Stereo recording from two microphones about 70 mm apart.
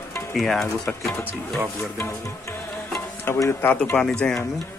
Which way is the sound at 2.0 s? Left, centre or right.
Left.